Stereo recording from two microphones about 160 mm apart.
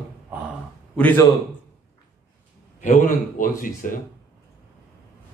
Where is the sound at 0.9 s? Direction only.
10° left (ahead or behind).